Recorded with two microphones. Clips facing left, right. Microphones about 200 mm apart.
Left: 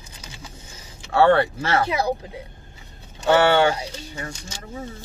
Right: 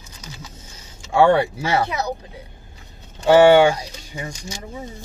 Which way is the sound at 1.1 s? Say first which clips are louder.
Right 1 dB; 10° right (ahead or behind).